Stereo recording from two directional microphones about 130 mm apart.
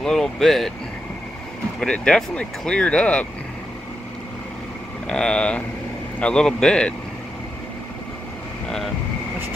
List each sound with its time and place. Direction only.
0.0 s speech: 5° left (ahead or behind)
1.8 s speech: 5° left (ahead or behind)
5.0 s speech: 5° left (ahead or behind)